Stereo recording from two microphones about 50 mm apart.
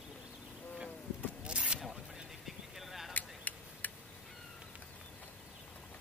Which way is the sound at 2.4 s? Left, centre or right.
Centre.